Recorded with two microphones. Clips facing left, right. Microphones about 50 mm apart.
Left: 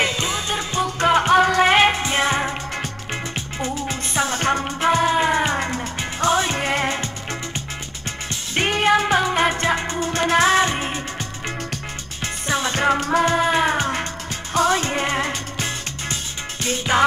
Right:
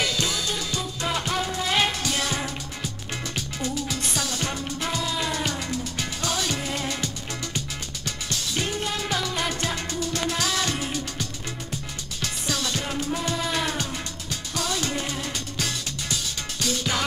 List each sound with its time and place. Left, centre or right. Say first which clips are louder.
0.0 s music: left 4 dB; left
0.9 s music: left 13 dB; left
1.7 s music: left 8 dB; left
6.6 s music: left 7 dB; left
8.5 s music: left 12 dB; left
9.0 s music: left 9 dB; left
12.8 s music: left 10 dB; left